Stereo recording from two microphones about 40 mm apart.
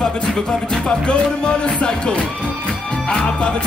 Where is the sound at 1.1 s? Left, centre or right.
Left.